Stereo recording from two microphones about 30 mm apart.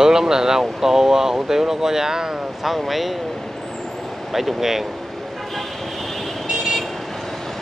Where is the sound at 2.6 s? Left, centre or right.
Centre.